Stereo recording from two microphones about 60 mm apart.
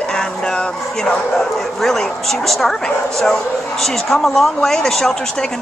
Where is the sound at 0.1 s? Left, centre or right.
Centre.